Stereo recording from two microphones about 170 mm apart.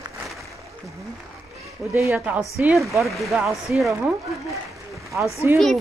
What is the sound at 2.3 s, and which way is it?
Speech, centre (ahead or behind).